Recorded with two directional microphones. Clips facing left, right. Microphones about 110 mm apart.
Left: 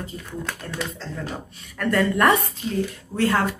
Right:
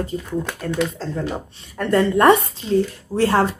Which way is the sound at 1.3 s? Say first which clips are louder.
Right 5 dB; 25° right (ahead or behind).